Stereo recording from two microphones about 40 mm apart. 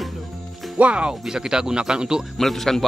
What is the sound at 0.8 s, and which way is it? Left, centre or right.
Speech, right.